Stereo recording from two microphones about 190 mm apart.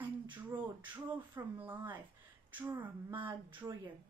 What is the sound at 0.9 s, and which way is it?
A woman's voice, 10° right (ahead or behind).